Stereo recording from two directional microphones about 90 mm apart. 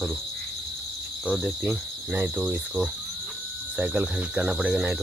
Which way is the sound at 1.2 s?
10° right (ahead or behind).